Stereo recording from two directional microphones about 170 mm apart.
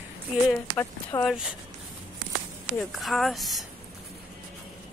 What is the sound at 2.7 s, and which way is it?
Speech, centre (ahead or behind).